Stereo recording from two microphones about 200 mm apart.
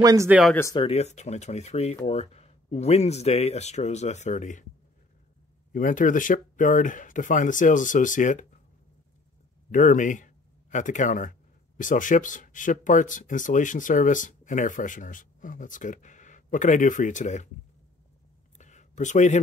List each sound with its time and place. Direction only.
0.0 s speech: 15° right (ahead or behind)
0.6 s speech: 15° left (ahead or behind)
0.8 s speech: 35° left (ahead or behind)
5.7 s speech: 40° left (ahead or behind)
9.7 s speech: 40° left (ahead or behind)
18.6 s a sound: 35° left (ahead or behind)